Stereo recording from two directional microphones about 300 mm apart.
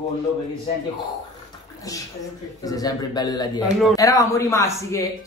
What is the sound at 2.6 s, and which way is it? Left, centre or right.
A man's voice, centre.